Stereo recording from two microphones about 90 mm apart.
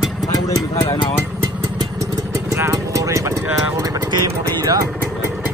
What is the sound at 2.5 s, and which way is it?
Clip-clop, 30° right (ahead or behind).